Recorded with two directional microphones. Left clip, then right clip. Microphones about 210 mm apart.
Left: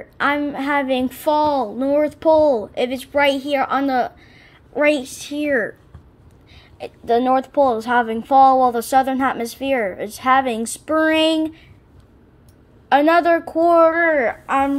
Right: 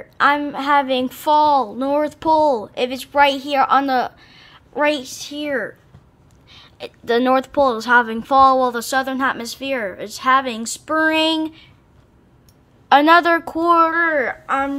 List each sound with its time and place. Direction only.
0.0 s a woman's voice: 10° right (ahead or behind)
6.5 s a woman's voice: 15° right (ahead or behind)
12.8 s a woman's voice: 20° right (ahead or behind); by 14.8 s centre (ahead or behind)